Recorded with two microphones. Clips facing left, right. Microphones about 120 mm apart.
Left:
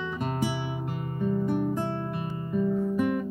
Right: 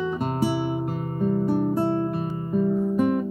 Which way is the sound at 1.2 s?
35° right (ahead or behind).